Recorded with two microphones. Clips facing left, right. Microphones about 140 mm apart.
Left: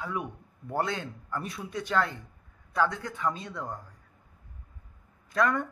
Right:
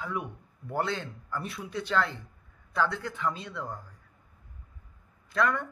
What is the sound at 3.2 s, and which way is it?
Speech, 15° left (ahead or behind).